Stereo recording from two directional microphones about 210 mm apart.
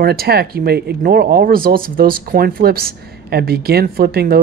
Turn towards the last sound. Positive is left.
turn(degrees=-50)  # may be behind; listen again after turning